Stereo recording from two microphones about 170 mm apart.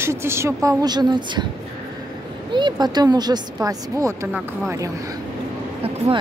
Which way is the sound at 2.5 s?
25° right (ahead or behind).